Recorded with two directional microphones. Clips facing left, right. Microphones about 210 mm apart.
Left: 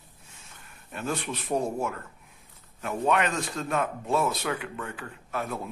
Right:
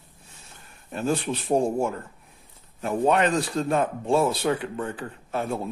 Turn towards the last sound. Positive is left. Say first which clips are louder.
# right 5 dB
turn(degrees=-30)  # may be behind; listen again after turning